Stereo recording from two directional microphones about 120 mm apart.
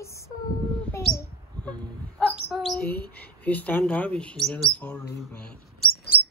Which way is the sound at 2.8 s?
15° left (ahead or behind).